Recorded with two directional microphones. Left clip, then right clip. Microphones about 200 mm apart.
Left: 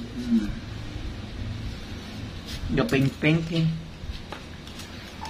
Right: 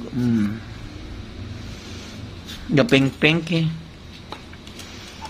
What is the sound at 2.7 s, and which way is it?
Speech, 55° right (ahead or behind).